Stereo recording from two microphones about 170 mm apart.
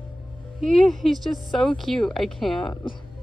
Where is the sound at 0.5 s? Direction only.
Centre (ahead or behind).